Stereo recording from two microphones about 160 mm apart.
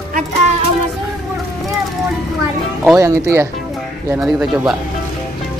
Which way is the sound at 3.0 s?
20° right (ahead or behind).